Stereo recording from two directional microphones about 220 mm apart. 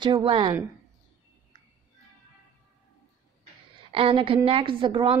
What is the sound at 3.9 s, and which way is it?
A woman's voice, 25° right (ahead or behind).